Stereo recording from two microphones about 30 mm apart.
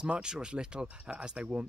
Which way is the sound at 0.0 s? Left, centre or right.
Right.